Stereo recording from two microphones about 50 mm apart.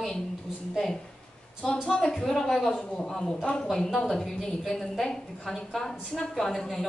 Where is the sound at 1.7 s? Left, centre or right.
Centre.